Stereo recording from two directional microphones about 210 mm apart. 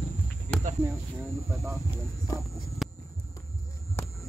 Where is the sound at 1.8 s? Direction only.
15° left (ahead or behind).